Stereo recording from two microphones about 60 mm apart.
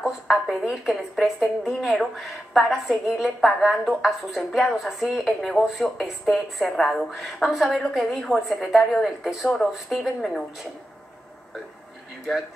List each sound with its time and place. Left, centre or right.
0.0 s a woman's voice: centre